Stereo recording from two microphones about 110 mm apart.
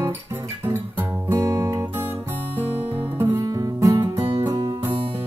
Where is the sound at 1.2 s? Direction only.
25° right (ahead or behind).